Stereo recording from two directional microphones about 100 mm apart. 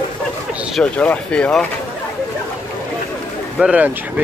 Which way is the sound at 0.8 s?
10° left (ahead or behind).